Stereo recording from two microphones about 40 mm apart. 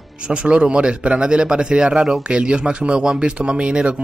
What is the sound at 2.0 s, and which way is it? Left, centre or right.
Speech, centre.